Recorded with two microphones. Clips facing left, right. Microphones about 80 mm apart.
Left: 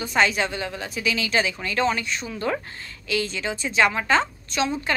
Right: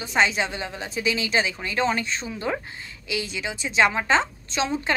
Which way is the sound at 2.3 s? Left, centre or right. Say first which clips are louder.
Left 1 dB; centre.